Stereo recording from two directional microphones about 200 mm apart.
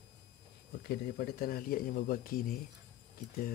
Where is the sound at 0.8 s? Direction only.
50° left (ahead or behind).